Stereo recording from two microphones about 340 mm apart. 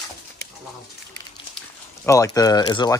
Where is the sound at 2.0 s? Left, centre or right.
Centre.